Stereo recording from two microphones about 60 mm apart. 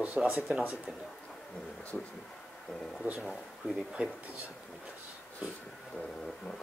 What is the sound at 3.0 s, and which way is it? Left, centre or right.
Speech, right.